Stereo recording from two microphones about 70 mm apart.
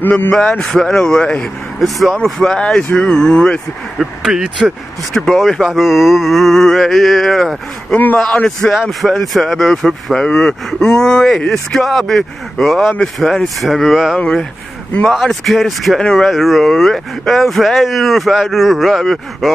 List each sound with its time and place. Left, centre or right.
0.0 s a sound: left
0.3 s speech: centre
1.8 s speech: centre
4.0 s speech: centre
5.1 s speech: centre
9.0 s speech: centre
14.1 s speech: centre
15.0 s speech: centre